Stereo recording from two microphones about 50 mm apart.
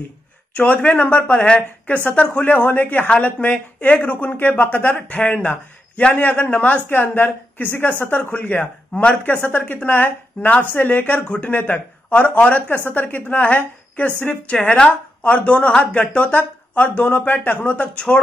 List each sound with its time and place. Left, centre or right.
0.6 s speech: left
3.1 s speech: left